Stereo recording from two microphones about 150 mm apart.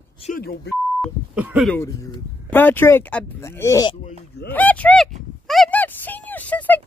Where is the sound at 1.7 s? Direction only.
20° left (ahead or behind).